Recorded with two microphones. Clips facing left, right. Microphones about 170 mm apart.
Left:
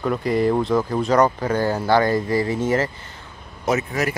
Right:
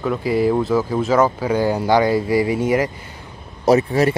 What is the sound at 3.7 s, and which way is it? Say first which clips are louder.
Speech: right 7 dB; 30° right (ahead or behind).